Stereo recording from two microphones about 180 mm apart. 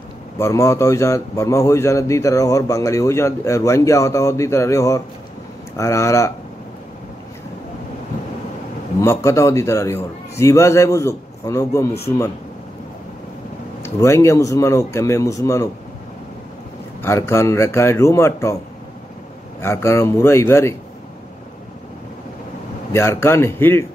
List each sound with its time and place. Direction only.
0.4 s a man's voice: 15° left (ahead or behind)
9.0 s a man's voice: 15° left (ahead or behind)
13.8 s a man's voice: 15° left (ahead or behind)
17.0 s a man's voice: 15° left (ahead or behind)
19.6 s a man's voice: 15° left (ahead or behind)
22.9 s a man's voice: 15° left (ahead or behind)